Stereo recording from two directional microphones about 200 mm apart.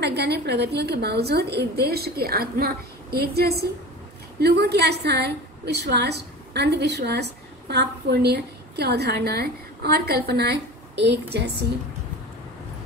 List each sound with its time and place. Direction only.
0.0 s a woman's voice: 55° right (ahead or behind)